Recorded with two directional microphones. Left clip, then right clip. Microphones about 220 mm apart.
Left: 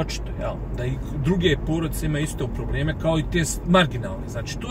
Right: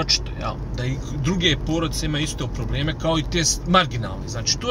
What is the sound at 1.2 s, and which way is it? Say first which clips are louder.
Speech: right 1 dB; 25° right (ahead or behind).